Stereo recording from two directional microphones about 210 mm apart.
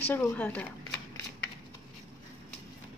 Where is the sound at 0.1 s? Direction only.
10° left (ahead or behind).